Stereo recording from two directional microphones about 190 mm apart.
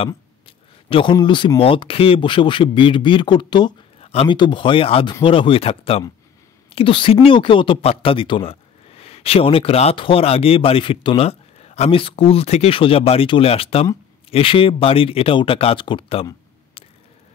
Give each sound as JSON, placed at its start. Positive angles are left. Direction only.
{"t": 0.0, "sound": "speech", "side_deg": 30}